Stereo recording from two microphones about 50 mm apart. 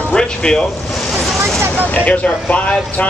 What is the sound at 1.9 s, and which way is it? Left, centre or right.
Speech, left.